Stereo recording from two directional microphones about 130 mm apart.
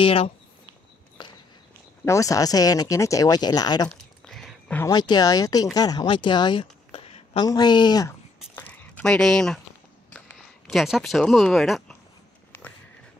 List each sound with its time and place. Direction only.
0.0 s speech: 45° left (ahead or behind)
1.2 s walk: 35° left (ahead or behind)
2.0 s speech: 25° left (ahead or behind)
4.3 s a sound: 5° left (ahead or behind)
4.9 s speech: 30° left (ahead or behind); by 7.4 s 50° left (ahead or behind)
7.4 s speech: 35° left (ahead or behind)
8.5 s a sound: 10° left (ahead or behind)
10.7 s speech: centre (ahead or behind)